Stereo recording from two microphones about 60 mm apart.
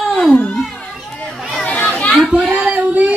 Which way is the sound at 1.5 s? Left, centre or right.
Left.